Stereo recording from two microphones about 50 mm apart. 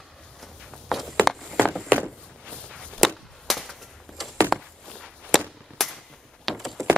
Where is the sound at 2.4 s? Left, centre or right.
Centre.